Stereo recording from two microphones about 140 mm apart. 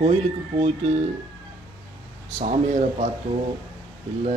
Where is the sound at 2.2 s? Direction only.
55° right (ahead or behind).